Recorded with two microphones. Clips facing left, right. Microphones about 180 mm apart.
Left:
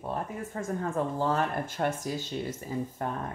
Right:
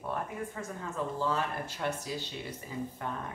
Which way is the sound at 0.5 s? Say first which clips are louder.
Left 11 dB; 50° left (ahead or behind).